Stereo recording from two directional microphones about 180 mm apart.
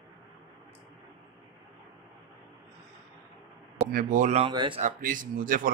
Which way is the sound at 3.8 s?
45° right (ahead or behind).